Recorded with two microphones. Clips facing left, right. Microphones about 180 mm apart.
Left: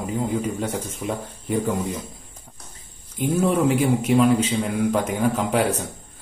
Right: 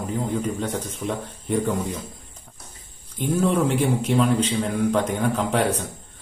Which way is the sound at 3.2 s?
5° left (ahead or behind).